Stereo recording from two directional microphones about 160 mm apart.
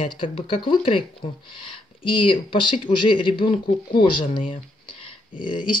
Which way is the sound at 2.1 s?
30° left (ahead or behind).